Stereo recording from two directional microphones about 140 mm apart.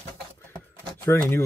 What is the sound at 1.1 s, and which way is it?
Speech, 20° left (ahead or behind).